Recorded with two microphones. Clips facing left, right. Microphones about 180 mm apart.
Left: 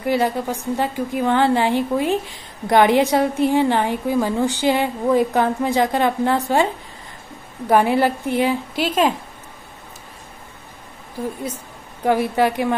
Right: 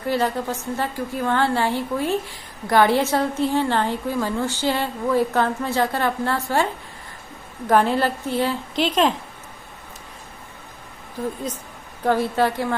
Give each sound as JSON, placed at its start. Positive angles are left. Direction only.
{"t": 0.0, "sound": "a woman's voice", "side_deg": 15}
{"t": 11.4, "sound": "a woman's voice", "side_deg": 10}